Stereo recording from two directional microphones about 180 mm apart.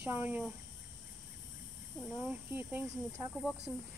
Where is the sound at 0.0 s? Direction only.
10° right (ahead or behind).